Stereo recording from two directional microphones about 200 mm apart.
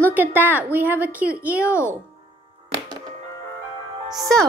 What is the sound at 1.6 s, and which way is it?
Speech, 15° left (ahead or behind).